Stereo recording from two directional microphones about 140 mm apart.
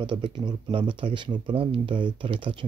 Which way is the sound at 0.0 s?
35° right (ahead or behind).